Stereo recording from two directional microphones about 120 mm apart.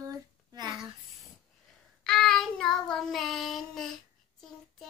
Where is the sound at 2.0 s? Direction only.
5° left (ahead or behind).